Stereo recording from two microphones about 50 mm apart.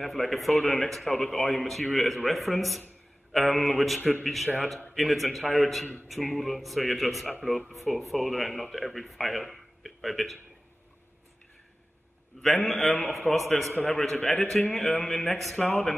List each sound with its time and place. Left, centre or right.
0.0 s speech: centre
12.4 s a man's voice: centre
15.6 s a man's voice: centre